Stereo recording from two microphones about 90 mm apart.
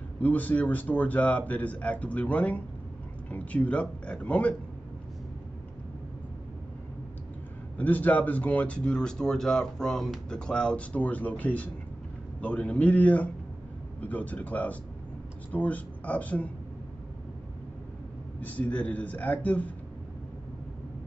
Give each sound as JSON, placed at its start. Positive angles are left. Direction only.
{"t": 0.2, "sound": "speech", "side_deg": 15}
{"t": 7.7, "sound": "speech", "side_deg": 20}
{"t": 18.4, "sound": "speech", "side_deg": 15}